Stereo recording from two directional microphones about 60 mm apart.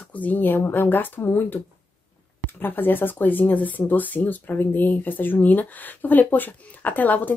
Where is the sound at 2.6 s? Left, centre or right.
Left.